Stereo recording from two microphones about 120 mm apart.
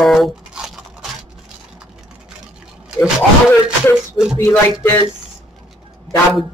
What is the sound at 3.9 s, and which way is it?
Music, 5° right (ahead or behind).